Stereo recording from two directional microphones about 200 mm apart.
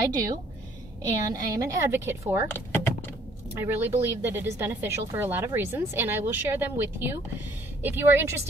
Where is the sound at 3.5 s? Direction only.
10° right (ahead or behind).